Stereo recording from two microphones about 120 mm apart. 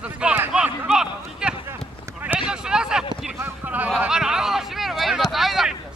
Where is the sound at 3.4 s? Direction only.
15° right (ahead or behind).